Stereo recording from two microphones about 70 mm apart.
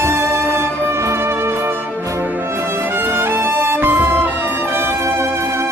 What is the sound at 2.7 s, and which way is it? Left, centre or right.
Music, right.